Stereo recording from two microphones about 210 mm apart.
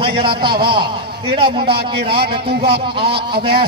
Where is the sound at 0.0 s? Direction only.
25° right (ahead or behind).